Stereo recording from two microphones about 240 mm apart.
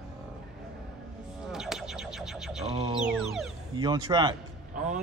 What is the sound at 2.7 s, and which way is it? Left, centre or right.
Music, centre.